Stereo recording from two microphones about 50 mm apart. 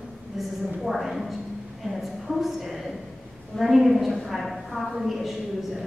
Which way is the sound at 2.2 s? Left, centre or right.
Centre.